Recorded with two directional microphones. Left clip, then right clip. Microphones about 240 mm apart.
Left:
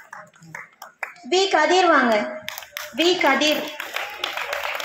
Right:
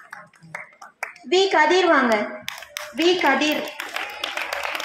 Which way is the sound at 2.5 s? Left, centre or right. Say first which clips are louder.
Even; right.